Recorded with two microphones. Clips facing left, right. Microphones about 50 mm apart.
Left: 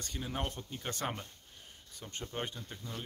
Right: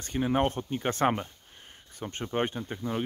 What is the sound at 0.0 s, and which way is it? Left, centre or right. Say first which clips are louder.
Speech: right 12 dB; right.